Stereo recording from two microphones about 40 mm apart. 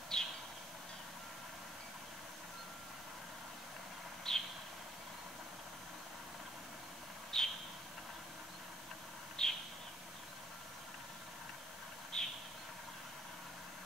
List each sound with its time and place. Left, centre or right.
0.1 s vehicle: centre
4.3 s vehicle: centre
7.3 s vehicle: centre
9.4 s a sound: centre
12.1 s vehicle: centre